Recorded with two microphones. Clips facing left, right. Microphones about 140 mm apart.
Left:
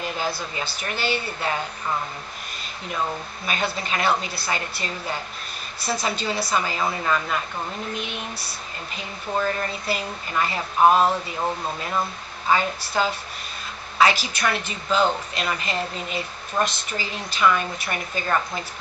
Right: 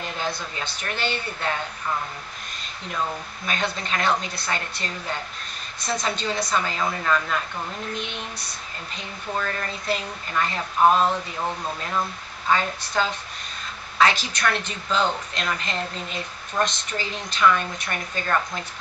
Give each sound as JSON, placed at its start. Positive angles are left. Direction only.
{"t": 0.0, "sound": "a woman's voice", "side_deg": 5}
{"t": 3.4, "sound": "a woman's voice", "side_deg": 5}